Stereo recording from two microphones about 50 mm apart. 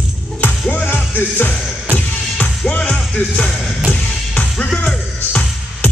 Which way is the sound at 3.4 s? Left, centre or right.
Centre.